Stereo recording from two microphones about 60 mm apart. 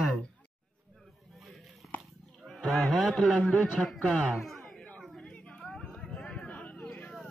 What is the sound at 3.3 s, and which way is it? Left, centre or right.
A man's voice, centre.